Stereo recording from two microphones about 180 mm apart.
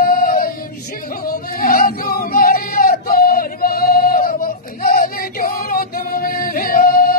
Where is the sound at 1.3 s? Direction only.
50° left (ahead or behind).